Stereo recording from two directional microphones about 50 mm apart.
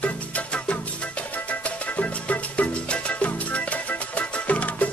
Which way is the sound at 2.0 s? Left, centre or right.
Left.